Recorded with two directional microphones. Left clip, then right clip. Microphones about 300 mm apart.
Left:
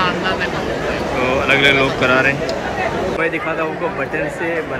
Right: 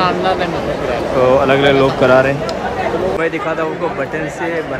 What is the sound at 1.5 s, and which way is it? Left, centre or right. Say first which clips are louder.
Speech: right 2 dB; centre.